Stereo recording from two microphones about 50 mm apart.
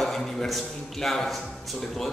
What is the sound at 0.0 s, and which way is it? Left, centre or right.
A man's voice, centre.